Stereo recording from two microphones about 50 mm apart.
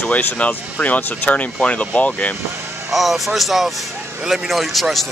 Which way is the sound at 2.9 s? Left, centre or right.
Centre.